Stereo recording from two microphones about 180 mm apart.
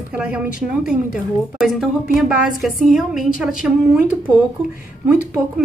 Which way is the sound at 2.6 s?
Centre (ahead or behind).